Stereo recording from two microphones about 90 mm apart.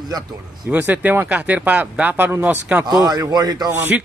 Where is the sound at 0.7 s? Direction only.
15° right (ahead or behind).